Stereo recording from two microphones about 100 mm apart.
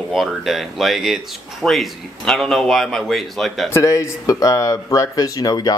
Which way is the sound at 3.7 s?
30° left (ahead or behind).